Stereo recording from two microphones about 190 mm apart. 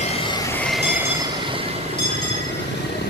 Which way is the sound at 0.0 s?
30° left (ahead or behind).